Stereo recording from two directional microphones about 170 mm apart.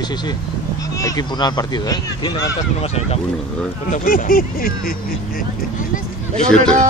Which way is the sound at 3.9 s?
55° left (ahead or behind).